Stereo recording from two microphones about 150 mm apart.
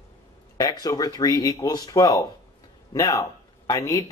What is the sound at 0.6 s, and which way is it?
Speech, 25° left (ahead or behind).